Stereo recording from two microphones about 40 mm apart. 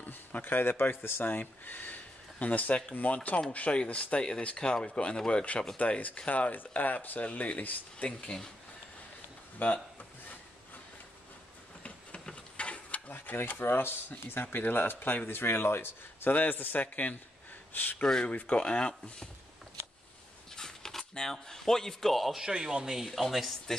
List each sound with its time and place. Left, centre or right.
0.0 s speech: left
2.3 s speech: left
5.8 s speech: left
9.6 s speech: left
12.3 s a sound: left
13.1 s speech: left
16.3 s speech: left
16.8 s speech: left
17.9 s speech: left
18.2 s speech: left
20.5 s a sound: centre
21.1 s speech: centre
22.5 s speech: centre
23.0 s speech: centre